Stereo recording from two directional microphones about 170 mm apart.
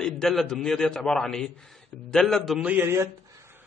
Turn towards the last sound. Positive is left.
turn(degrees=-15)  # may be behind; listen again after turning